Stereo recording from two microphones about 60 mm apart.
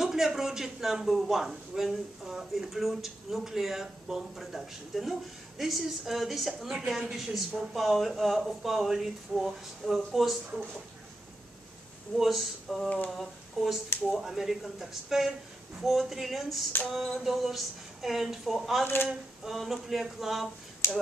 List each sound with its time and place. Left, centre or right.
0.0 s a man's voice: centre
12.2 s a man's voice: centre
20.8 s speech: left